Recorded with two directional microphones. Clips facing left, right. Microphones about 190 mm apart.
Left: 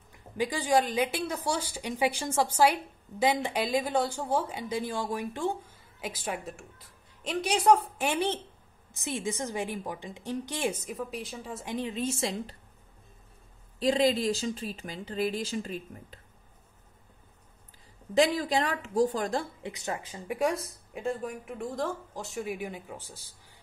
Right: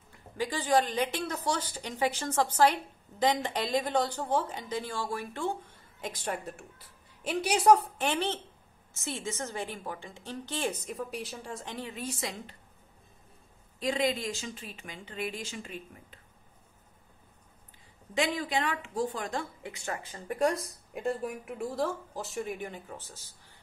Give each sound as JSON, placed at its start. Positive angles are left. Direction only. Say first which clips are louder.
{"t": 0.4, "sound": "speech", "louder": "left 1 dB", "side_deg": 15}
{"t": 8.0, "sound": "speech", "louder": "left 2 dB", "side_deg": 10}
{"t": 10.9, "sound": "speech", "louder": "left 1 dB", "side_deg": 0}
{"t": 11.6, "sound": "a woman's voice", "louder": "left 9 dB", "side_deg": 15}
{"t": 13.7, "sound": "speech", "louder": "left 5 dB", "side_deg": 30}
{"t": 18.1, "sound": "speech", "louder": "left 5 dB", "side_deg": 35}
{"t": 19.6, "sound": "speech", "louder": "left 2 dB", "side_deg": 20}
{"t": 20.6, "sound": "speech", "louder": "even", "side_deg": 0}